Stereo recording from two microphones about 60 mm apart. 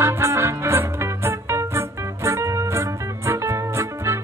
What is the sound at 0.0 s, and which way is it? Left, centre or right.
Music, right.